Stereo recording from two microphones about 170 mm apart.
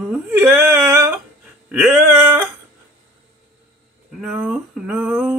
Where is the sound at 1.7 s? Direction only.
5° right (ahead or behind).